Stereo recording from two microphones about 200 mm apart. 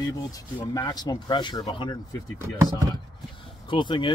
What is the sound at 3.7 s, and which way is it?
Speech, 25° left (ahead or behind).